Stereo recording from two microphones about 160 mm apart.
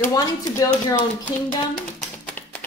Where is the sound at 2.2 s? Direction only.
10° left (ahead or behind).